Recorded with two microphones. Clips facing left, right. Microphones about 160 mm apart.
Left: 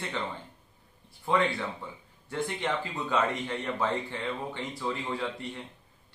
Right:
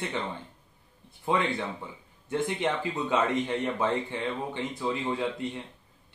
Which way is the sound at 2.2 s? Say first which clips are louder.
Right 3 dB; 20° right (ahead or behind).